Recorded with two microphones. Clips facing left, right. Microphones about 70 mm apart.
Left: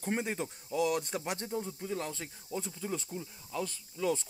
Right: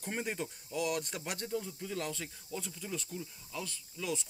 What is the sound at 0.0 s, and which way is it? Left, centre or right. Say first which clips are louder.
Speech: left 3 dB; left.